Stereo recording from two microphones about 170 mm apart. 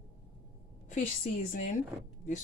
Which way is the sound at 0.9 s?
50° left (ahead or behind).